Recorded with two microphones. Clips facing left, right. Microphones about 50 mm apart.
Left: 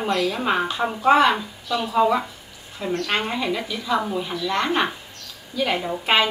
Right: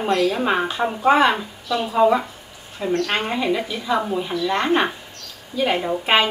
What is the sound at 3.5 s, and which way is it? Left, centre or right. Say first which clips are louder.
Speech: right 2 dB; right.